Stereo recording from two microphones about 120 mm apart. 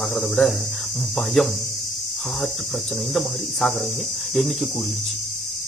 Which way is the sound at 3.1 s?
Centre (ahead or behind).